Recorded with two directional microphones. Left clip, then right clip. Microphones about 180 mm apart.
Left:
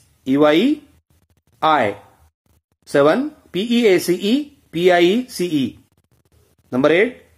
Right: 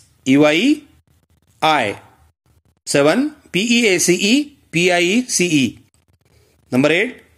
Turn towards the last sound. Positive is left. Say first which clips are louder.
# left 1 dB
turn(degrees=-35)  # may be behind; listen again after turning